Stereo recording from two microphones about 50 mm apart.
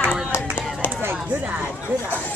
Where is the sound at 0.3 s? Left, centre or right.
Left.